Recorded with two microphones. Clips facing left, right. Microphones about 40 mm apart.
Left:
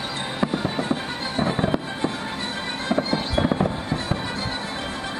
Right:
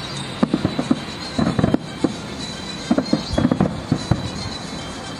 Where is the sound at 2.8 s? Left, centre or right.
Left.